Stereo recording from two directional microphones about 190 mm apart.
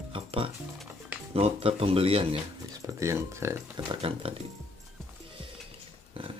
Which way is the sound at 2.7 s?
15° right (ahead or behind).